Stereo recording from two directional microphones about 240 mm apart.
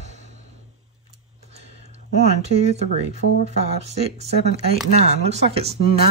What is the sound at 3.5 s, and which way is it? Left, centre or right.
Speech, right.